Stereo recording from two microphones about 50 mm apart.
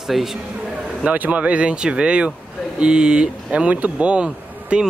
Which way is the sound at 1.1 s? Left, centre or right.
Right.